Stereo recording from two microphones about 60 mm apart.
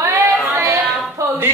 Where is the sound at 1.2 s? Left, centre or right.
Right.